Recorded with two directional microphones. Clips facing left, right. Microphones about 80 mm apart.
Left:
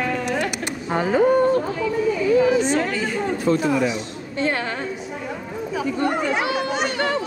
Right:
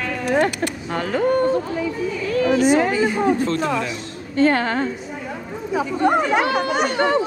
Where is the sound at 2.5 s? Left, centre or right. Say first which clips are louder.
Right 4 dB; right.